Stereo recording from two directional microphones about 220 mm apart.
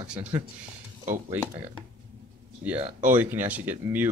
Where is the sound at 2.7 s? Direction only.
30° right (ahead or behind).